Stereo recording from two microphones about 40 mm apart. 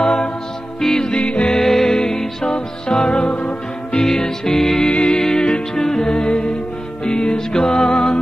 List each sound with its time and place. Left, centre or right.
0.0 s music: left
1.5 s music: centre; by 4.0 s left
4.0 s music: centre
4.9 s music: left